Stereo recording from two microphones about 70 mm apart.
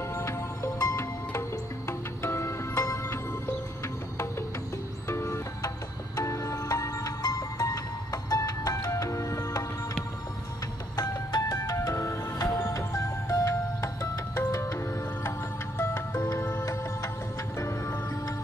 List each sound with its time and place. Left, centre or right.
0.1 s music: left
5.0 s music: left
11.0 s music: left
15.8 s music: left
17.6 s music: left